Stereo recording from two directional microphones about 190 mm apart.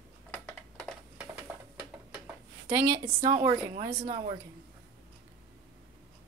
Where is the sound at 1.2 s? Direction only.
5° right (ahead or behind).